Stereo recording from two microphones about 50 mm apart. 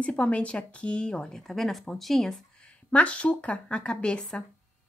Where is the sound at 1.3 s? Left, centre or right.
Centre.